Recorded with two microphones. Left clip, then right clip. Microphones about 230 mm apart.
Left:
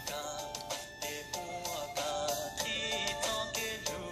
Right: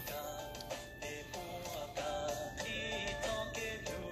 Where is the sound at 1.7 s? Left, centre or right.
Left.